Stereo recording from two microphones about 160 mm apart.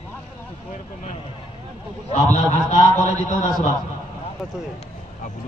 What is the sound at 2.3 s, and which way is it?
A man's voice, 45° left (ahead or behind).